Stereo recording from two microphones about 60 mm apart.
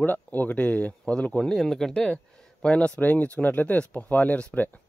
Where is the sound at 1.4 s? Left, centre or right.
Centre.